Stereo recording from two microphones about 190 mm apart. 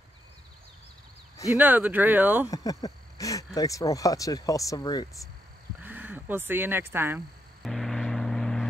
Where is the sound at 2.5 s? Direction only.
20° left (ahead or behind).